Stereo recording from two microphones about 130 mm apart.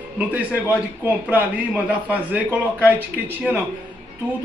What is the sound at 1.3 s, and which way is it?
A man's voice, 10° right (ahead or behind).